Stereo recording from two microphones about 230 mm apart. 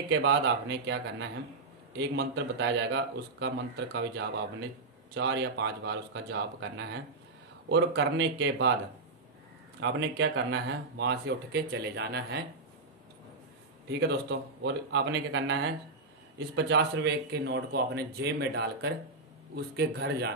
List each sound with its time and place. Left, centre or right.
0.1 s speech: right
2.0 s speech: right
5.1 s speech: right
9.8 s speech: right
13.8 s speech: right